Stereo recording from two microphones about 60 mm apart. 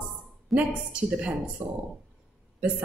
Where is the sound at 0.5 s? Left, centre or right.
Centre.